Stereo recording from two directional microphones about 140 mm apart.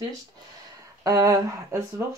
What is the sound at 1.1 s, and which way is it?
Speech, 20° right (ahead or behind).